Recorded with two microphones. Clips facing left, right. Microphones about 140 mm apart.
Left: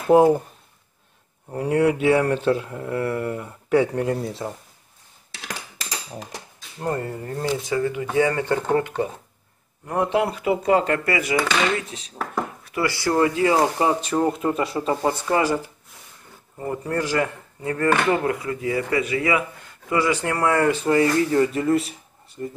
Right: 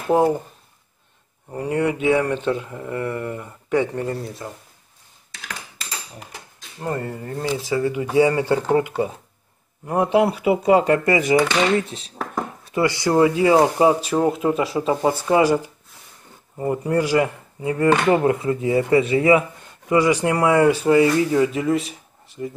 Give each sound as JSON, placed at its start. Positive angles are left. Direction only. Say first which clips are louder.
{"t": 0.1, "sound": "speech", "louder": "left 3 dB", "side_deg": 10}
{"t": 1.5, "sound": "speech", "louder": "left 2 dB", "side_deg": 5}
{"t": 6.8, "sound": "speech", "louder": "even", "side_deg": 0}
{"t": 7.7, "sound": "speech", "louder": "right 4 dB", "side_deg": -15}
{"t": 18.1, "sound": "speech", "louder": "right 5 dB", "side_deg": -25}